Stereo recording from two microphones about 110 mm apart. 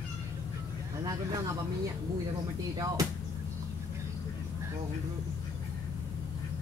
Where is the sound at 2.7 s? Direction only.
30° right (ahead or behind).